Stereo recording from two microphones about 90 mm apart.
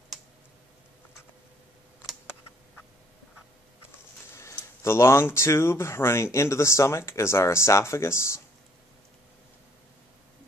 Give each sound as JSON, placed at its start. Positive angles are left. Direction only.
{"t": 4.8, "sound": "speech", "side_deg": 30}